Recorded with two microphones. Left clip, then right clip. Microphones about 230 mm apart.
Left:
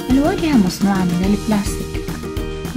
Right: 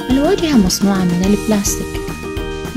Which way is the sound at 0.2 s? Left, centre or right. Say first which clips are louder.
Right 5 dB; right.